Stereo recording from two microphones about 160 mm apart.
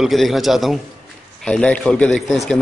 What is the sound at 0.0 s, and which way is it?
Speech, centre (ahead or behind).